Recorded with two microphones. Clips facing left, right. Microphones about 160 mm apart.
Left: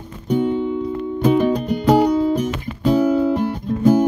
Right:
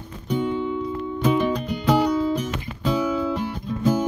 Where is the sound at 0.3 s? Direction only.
45° left (ahead or behind).